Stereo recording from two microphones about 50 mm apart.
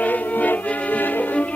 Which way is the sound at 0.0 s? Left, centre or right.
Left.